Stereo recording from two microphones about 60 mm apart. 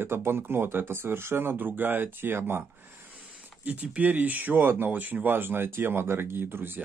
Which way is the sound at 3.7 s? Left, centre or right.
Right.